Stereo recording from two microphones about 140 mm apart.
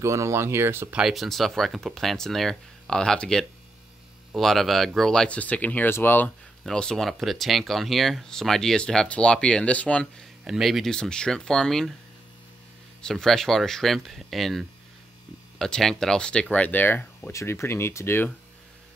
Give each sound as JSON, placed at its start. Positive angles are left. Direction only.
{"t": 0.0, "sound": "speech", "side_deg": -20}
{"t": 0.9, "sound": "speech", "side_deg": 0}
{"t": 10.4, "sound": "speech", "side_deg": 0}
{"t": 13.0, "sound": "speech", "side_deg": 5}